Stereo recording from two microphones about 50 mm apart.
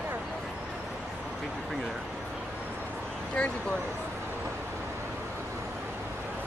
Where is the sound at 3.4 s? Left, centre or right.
Centre.